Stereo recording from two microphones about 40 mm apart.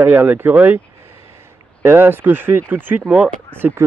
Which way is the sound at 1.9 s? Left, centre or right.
Right.